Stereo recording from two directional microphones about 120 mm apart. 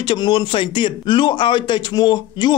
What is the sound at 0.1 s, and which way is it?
Speech, 40° left (ahead or behind).